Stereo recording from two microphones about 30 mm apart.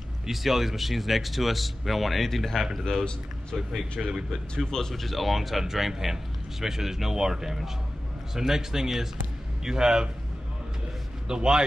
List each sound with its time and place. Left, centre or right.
0.3 s speech: centre
2.3 s speech: centre
3.5 s speech: centre
4.0 s a man's voice: right
4.6 s speech: centre
4.9 s a man's voice: centre
11.2 s a man's voice: right